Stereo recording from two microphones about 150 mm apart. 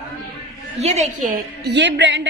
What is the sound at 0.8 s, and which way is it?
Speech, 45° right (ahead or behind).